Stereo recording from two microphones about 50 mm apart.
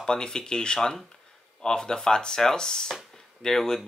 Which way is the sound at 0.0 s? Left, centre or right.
Centre.